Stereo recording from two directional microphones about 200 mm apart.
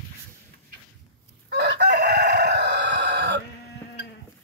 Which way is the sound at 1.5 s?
55° right (ahead or behind).